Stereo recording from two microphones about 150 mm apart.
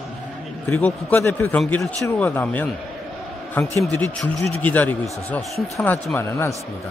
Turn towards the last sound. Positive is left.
turn(degrees=20)  # may be behind; listen again after turning